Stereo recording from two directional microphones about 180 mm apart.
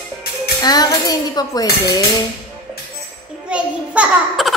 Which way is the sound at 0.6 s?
20° left (ahead or behind).